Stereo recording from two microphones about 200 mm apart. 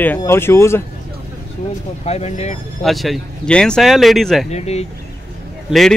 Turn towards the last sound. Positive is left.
turn(degrees=0)  # may be behind; listen again after turning